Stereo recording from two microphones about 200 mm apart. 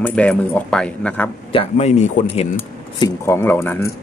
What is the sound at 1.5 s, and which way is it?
Speech, 30° left (ahead or behind).